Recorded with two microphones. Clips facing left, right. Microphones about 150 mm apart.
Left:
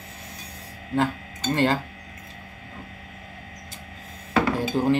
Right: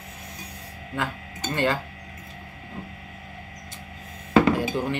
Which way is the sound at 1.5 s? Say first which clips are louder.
Left 3 dB; 35° left (ahead or behind).